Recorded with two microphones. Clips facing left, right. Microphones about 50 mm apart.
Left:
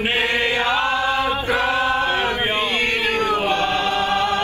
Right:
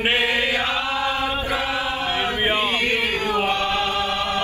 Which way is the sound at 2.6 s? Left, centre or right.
Left.